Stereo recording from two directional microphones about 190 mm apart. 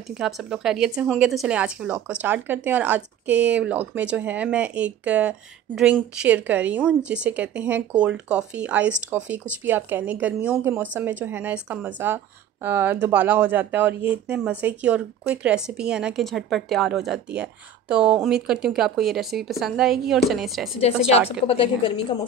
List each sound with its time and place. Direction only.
0.2 s a woman's voice: centre (ahead or behind)
21.5 s a woman's voice: 30° left (ahead or behind)